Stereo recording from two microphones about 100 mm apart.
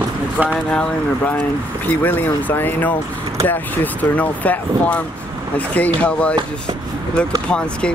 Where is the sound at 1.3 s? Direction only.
20° left (ahead or behind).